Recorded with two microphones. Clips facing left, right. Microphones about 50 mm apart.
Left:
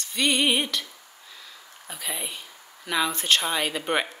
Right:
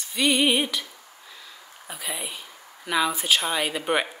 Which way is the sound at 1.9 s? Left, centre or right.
Centre.